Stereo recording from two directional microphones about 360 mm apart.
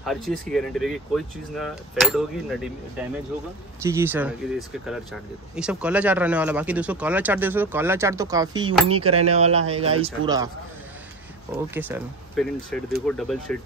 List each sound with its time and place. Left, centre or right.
0.0 s speech: centre
8.8 s speech: right
9.3 s speech: centre
11.5 s speech: centre